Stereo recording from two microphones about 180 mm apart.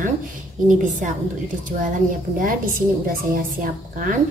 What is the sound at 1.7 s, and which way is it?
Speech, 45° right (ahead or behind).